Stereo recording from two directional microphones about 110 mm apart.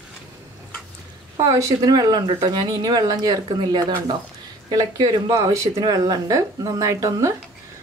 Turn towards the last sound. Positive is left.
turn(degrees=-30)  # may be behind; listen again after turning